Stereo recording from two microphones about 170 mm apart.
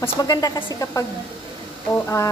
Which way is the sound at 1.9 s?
15° left (ahead or behind).